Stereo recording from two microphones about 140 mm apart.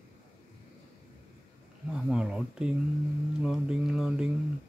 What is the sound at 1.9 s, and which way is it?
Mantra, 5° right (ahead or behind).